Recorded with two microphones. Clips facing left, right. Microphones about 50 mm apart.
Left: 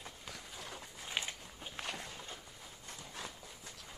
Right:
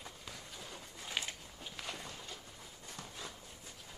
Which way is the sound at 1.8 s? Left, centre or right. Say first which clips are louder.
Left 3 dB; left.